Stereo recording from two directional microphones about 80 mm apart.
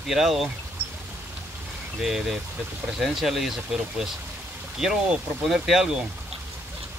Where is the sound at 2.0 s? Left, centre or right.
Centre.